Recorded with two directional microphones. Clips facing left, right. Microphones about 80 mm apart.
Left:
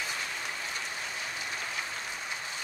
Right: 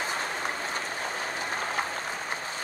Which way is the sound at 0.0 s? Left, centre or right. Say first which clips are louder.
Right 6 dB; right.